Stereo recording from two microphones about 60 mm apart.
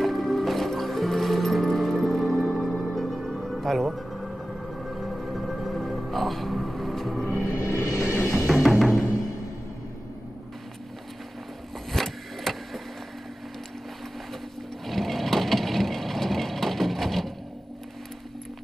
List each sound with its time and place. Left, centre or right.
0.0 s music: centre
7.2 s music: left
7.7 s music: left
8.5 s music: centre
11.9 s vehicle: centre
14.9 s wood: centre